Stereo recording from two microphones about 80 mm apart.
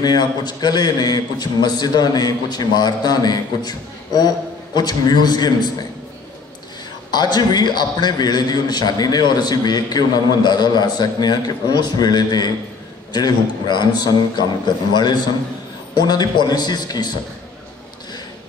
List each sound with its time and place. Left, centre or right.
0.0 s a man's voice: left
7.1 s a man's voice: left